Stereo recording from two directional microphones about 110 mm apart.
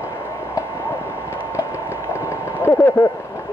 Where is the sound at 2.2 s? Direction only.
20° left (ahead or behind).